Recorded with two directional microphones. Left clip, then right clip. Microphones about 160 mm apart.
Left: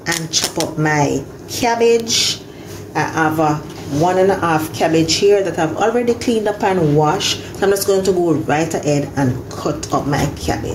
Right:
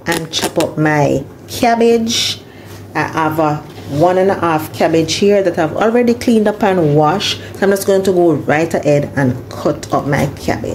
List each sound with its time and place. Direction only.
0.0 s speech: 60° right (ahead or behind)
0.8 s speech: 75° right (ahead or behind)